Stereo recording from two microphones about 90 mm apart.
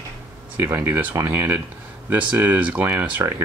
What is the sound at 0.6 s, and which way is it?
Speech, 25° right (ahead or behind).